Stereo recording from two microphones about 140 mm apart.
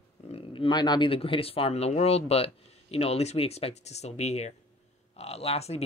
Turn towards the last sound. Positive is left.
turn(degrees=50)  # may be behind; listen again after turning